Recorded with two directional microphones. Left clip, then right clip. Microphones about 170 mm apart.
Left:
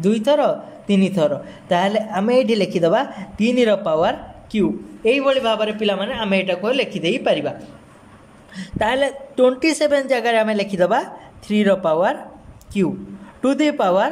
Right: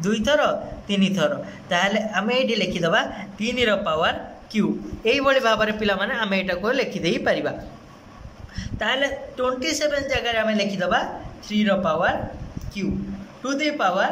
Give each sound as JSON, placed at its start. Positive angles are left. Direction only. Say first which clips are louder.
{"t": 0.0, "sound": "a man's voice", "louder": "left 3 dB", "side_deg": 25}
{"t": 8.5, "sound": "speech", "louder": "left 4 dB", "side_deg": 25}
{"t": 13.4, "sound": "speech", "louder": "left 5 dB", "side_deg": 45}